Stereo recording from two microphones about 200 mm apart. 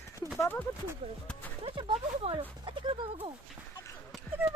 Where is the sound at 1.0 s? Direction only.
30° right (ahead or behind).